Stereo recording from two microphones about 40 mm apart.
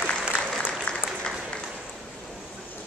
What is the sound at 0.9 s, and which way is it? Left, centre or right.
Applause, left.